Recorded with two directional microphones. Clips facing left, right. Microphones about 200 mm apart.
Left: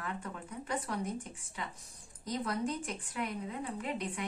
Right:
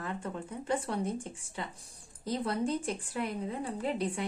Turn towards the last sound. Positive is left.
turn(degrees=-30)  # may be behind; listen again after turning